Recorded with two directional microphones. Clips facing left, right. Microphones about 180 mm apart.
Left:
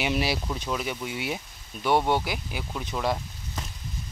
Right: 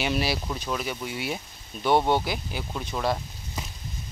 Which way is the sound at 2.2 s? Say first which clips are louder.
Right 1 dB; 10° left (ahead or behind).